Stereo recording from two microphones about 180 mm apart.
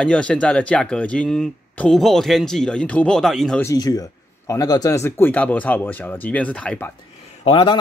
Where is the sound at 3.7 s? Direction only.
20° left (ahead or behind).